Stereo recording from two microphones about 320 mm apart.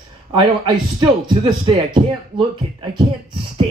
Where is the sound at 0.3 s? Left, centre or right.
Centre.